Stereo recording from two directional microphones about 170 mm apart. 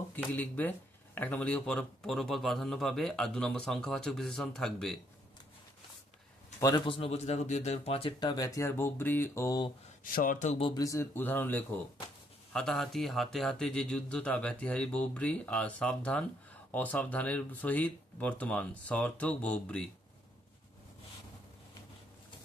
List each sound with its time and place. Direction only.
0.1 s speech: 10° left (ahead or behind)
6.6 s speech: 30° left (ahead or behind)
8.2 s speech: 20° left (ahead or behind)
10.0 s speech: 55° left (ahead or behind)
10.6 s speech: 20° left (ahead or behind)